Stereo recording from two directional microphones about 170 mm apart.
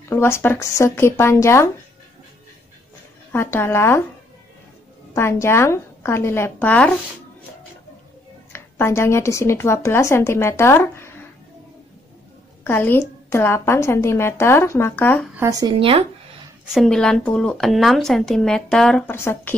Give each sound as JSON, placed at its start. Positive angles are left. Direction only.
{"t": 0.1, "sound": "a woman's voice", "side_deg": 15}
{"t": 3.3, "sound": "a woman's voice", "side_deg": 15}
{"t": 5.1, "sound": "a woman's voice", "side_deg": 15}
{"t": 8.5, "sound": "a woman's voice", "side_deg": 15}
{"t": 12.6, "sound": "a woman's voice", "side_deg": 15}
{"t": 15.3, "sound": "speech", "side_deg": -15}
{"t": 15.8, "sound": "speech", "side_deg": -35}
{"t": 16.6, "sound": "speech", "side_deg": 0}
{"t": 19.1, "sound": "a woman's voice", "side_deg": 15}